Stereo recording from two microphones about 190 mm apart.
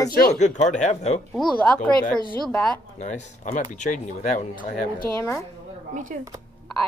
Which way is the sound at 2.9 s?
40° left (ahead or behind).